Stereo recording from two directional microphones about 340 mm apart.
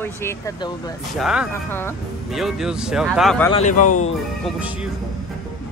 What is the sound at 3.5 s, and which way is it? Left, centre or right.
Speech, left.